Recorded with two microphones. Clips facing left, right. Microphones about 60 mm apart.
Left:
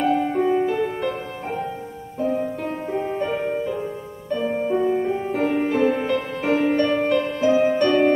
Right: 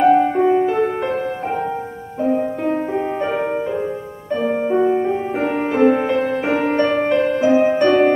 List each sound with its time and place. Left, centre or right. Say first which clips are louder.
0.0 s music: right 7 dB; right
2.2 s music: right 5 dB; right